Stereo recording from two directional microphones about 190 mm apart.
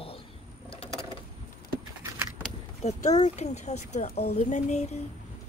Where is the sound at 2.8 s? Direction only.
35° left (ahead or behind).